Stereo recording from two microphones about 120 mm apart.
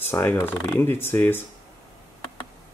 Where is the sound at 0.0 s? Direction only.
15° left (ahead or behind).